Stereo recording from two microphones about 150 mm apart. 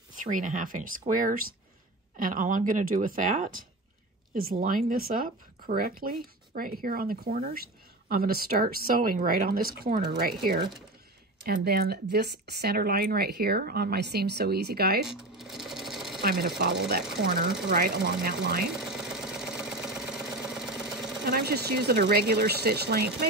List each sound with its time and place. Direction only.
0.1 s speech: 60° right (ahead or behind)
4.3 s speech: 75° right (ahead or behind)
15.0 s sewing machine: centre (ahead or behind)
16.2 s speech: 90° right
17.6 s speech: 85° right
18.8 s engine: 5° right (ahead or behind)
21.3 s speech: 90° right